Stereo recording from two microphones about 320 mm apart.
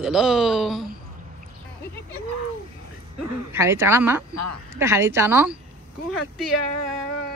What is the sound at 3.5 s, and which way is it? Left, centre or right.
A woman's voice, centre.